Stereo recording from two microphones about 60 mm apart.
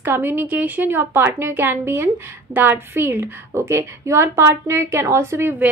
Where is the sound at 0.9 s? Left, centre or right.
Right.